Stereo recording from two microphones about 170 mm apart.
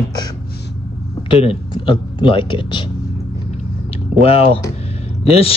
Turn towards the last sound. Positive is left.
turn(degrees=35)  # may be behind; listen again after turning